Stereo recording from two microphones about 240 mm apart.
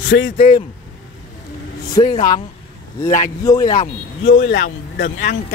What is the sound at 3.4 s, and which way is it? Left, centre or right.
Speech, centre.